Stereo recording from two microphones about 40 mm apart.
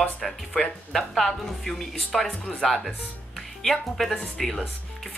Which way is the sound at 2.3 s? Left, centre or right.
Left.